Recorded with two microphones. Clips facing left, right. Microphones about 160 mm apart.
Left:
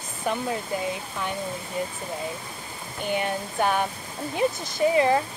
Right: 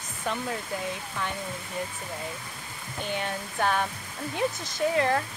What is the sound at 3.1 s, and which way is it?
Speech, 10° left (ahead or behind).